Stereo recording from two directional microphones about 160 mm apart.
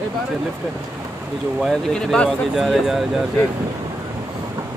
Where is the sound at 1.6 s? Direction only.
5° left (ahead or behind).